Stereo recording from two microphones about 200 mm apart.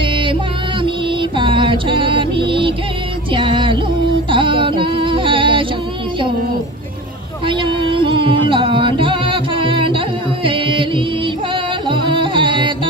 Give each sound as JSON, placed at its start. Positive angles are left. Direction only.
{"t": 0.0, "sound": "music", "side_deg": -25}
{"t": 7.4, "sound": "music", "side_deg": -25}